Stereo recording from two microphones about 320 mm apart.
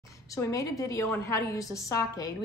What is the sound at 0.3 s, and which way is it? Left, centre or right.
Speech, centre.